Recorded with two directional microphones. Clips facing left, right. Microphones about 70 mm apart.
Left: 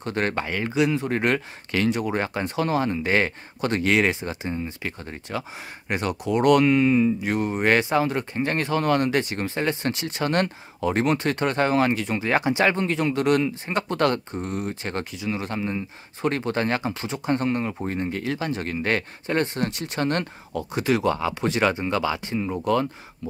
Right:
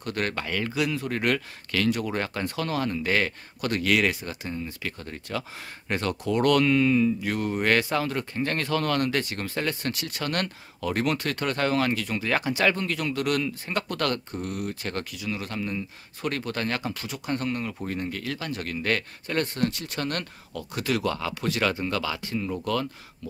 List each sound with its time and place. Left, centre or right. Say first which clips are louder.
0.0 s speech: left 4 dB; left